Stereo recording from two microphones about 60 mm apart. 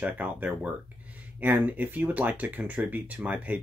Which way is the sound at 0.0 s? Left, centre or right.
Right.